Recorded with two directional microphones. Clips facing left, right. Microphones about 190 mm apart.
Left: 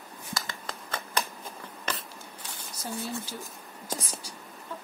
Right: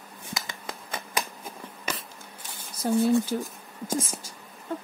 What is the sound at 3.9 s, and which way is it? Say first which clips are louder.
Speech: right 7 dB; 45° right (ahead or behind).